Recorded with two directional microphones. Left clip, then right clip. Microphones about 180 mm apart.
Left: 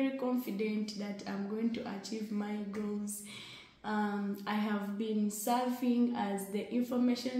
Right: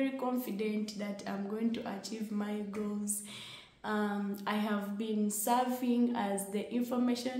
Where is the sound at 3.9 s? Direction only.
20° right (ahead or behind).